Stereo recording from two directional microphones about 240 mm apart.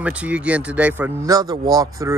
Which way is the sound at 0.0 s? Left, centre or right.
Centre.